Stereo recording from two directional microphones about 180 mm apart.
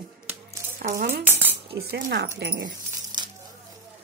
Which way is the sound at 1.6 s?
60° right (ahead or behind).